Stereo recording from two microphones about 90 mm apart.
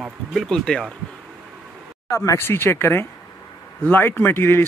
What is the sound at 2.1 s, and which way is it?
Speech, 30° left (ahead or behind).